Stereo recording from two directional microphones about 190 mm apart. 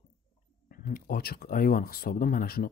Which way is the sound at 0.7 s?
50° left (ahead or behind).